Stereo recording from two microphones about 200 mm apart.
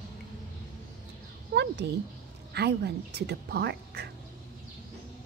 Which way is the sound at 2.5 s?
55° right (ahead or behind).